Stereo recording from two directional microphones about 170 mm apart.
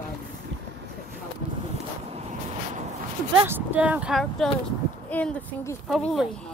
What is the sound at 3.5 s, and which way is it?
Speech, 10° right (ahead or behind).